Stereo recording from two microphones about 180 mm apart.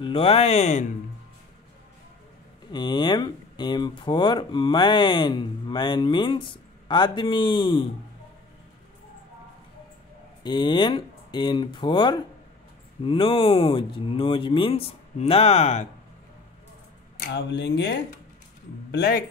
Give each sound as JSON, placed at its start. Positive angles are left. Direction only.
{"t": 0.0, "sound": "speech", "side_deg": 30}
{"t": 2.7, "sound": "speech", "side_deg": 25}
{"t": 10.4, "sound": "speech", "side_deg": 25}
{"t": 17.2, "sound": "speech", "side_deg": 65}